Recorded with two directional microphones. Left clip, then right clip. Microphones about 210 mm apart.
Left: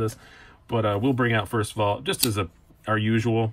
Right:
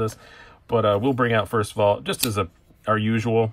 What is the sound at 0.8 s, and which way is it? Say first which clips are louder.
Speech: right 3 dB; 10° right (ahead or behind).